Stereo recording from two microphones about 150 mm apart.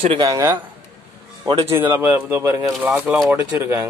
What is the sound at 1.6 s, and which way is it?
Speech, 15° right (ahead or behind).